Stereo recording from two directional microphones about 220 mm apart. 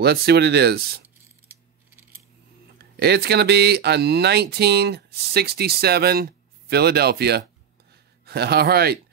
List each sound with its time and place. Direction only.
0.0 s speech: 45° right (ahead or behind)
1.5 s coin: 10° right (ahead or behind)
2.8 s speech: 45° right (ahead or behind)